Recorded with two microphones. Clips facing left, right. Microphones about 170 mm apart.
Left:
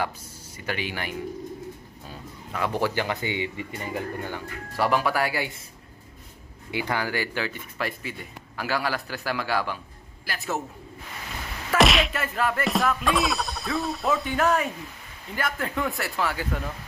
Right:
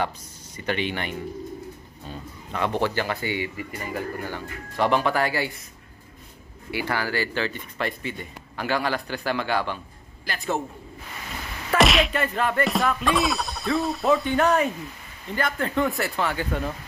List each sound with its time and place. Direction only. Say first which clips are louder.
0.6 s speech: right 4 dB; 5° left (ahead or behind); by 4.0 s 20° left (ahead or behind)
4.3 s speech: even; 5° left (ahead or behind)
6.7 s speech: right 1 dB; 15° left (ahead or behind)
11.7 s speech: right 1 dB; centre (ahead or behind)